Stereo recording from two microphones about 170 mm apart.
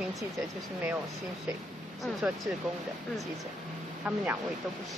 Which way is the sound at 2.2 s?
5° right (ahead or behind).